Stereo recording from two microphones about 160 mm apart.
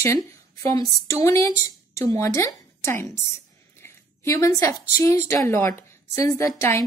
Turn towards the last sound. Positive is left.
turn(degrees=15)  # may be behind; listen again after turning